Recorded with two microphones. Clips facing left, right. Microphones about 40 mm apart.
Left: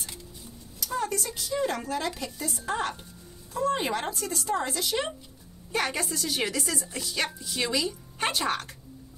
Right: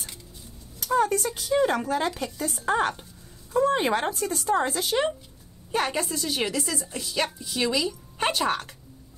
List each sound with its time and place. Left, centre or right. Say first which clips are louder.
0.7 s a woman's voice: right 7 dB; right